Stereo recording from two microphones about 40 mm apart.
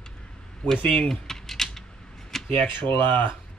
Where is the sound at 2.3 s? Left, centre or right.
Centre.